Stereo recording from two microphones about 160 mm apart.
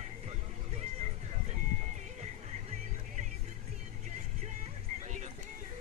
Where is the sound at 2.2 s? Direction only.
45° right (ahead or behind).